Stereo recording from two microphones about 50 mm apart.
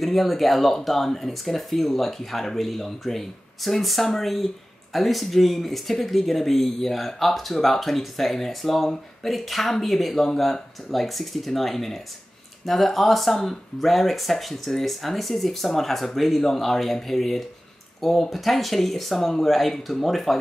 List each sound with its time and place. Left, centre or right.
0.0 s speech: centre